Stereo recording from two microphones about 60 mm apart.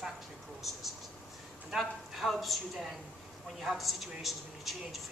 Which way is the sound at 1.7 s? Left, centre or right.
Centre.